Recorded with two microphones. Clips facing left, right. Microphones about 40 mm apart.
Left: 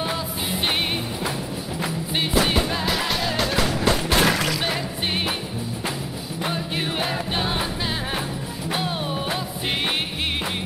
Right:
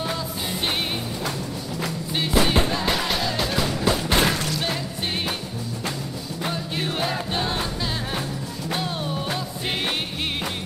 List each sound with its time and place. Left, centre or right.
2.8 s music: centre
6.4 s music: left
8.6 s music: centre